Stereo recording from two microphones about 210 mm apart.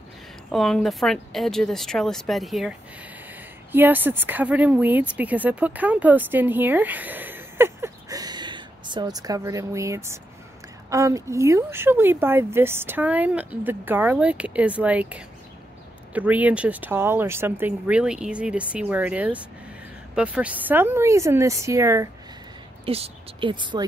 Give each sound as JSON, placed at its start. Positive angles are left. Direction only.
{"t": 0.5, "sound": "a woman's voice", "side_deg": 0}
{"t": 22.8, "sound": "speech", "side_deg": -30}